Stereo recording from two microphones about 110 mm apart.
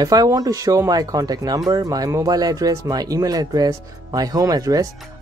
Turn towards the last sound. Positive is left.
turn(degrees=-35)  # may be behind; listen again after turning